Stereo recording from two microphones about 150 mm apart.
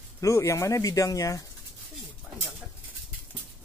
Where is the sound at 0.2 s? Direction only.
20° left (ahead or behind).